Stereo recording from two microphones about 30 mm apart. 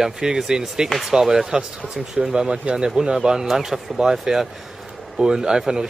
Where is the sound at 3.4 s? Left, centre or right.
Centre.